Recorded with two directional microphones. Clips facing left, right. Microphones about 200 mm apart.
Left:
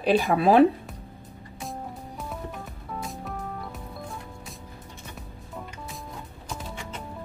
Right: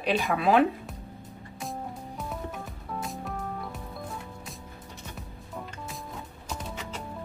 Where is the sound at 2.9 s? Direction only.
Centre (ahead or behind).